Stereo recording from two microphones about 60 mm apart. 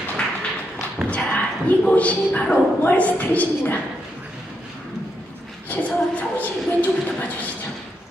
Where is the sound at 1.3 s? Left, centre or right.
Left.